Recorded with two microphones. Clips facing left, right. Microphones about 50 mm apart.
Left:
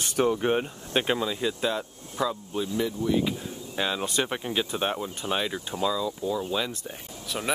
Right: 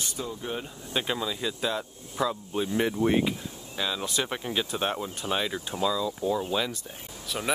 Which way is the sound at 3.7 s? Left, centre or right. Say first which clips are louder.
Left 3 dB; left.